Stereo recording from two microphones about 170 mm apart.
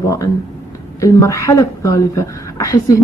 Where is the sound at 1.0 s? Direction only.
20° left (ahead or behind).